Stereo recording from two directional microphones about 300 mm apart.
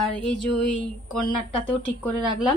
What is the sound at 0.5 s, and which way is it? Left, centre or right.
Speech, left.